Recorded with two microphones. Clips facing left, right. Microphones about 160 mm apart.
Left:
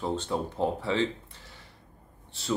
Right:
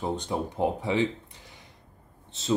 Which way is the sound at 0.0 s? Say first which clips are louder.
Even; 15° right (ahead or behind).